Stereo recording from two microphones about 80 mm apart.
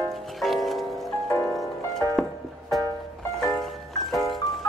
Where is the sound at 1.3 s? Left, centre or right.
Left.